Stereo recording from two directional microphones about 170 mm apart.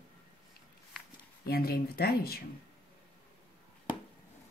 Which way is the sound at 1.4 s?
65° left (ahead or behind).